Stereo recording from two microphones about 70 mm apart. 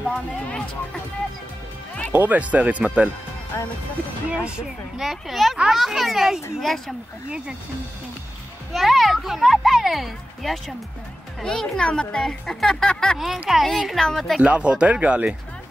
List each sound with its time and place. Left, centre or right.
0.0 s speech: centre
2.1 s speech: right
4.3 s speech: centre
5.0 s a child's voice: centre
7.2 s speech: centre
8.7 s a child's voice: centre
11.4 s speech: centre
13.2 s a child's voice: centre
14.4 s speech: centre